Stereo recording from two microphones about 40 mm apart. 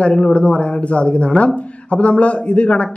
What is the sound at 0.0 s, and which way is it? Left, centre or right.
Speech, left.